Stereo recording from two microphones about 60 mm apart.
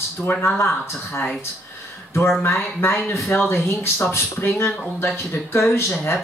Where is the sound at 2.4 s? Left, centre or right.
Left.